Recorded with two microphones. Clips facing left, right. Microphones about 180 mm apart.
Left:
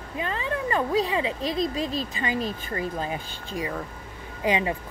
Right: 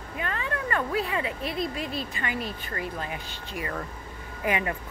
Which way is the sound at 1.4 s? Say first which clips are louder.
Left 4 dB; 90° left.